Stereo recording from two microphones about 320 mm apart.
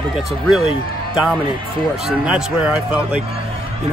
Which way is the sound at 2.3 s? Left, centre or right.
Centre.